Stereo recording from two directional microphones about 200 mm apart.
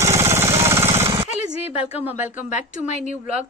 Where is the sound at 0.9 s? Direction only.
15° right (ahead or behind).